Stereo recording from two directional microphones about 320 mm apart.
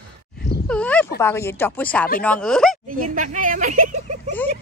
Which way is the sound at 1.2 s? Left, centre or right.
Centre.